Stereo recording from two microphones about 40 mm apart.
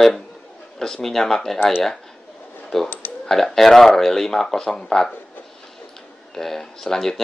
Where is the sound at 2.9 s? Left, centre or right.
Left.